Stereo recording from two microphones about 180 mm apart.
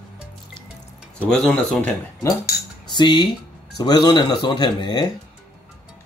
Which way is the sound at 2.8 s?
25° left (ahead or behind).